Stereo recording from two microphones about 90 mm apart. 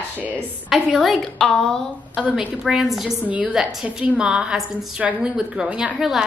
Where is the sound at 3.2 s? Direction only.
15° right (ahead or behind).